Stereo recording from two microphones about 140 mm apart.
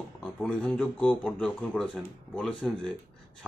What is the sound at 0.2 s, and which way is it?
Speech, 5° left (ahead or behind).